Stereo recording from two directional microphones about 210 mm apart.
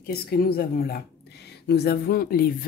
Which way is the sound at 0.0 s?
45° left (ahead or behind).